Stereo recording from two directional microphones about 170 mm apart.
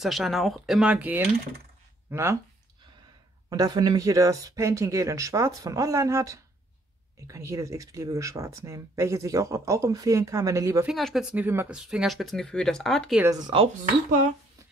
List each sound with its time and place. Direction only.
0.0 s speech: centre (ahead or behind)
3.4 s speech: 20° right (ahead or behind)
10.9 s speech: centre (ahead or behind)
11.3 s speech: 10° right (ahead or behind)
13.5 s speech: 30° right (ahead or behind)